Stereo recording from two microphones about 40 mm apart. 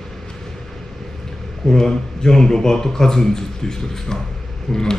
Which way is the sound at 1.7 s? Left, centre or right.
Centre.